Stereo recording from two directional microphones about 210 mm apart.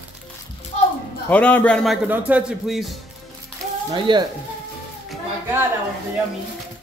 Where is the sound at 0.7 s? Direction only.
30° left (ahead or behind).